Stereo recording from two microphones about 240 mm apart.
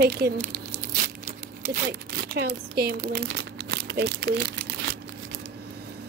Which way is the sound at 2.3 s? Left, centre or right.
Right.